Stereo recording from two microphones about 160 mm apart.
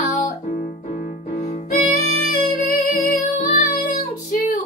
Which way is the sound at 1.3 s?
45° left (ahead or behind).